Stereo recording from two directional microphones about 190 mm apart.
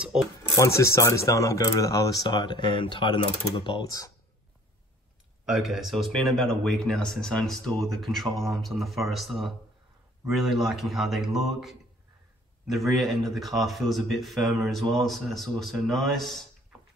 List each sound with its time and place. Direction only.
0.0 s speech: 5° right (ahead or behind)
0.6 s speech: 15° left (ahead or behind)
5.4 s speech: centre (ahead or behind)